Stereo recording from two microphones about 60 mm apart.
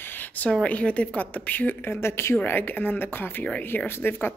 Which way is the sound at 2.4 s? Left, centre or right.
Left.